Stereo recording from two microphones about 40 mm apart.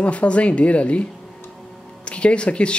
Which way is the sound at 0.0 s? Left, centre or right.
Left.